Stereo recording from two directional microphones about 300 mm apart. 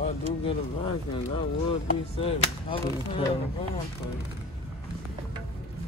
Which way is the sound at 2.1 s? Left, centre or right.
Centre.